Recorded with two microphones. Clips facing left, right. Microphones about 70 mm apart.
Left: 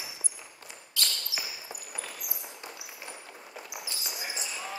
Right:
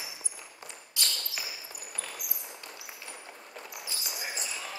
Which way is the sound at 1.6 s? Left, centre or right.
Centre.